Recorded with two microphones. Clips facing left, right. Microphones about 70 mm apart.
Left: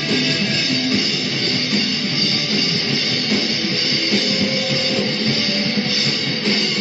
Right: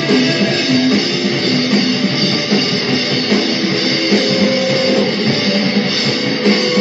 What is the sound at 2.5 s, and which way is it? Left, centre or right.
Music, right.